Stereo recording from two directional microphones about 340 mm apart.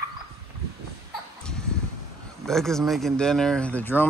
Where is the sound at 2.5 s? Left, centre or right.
Centre.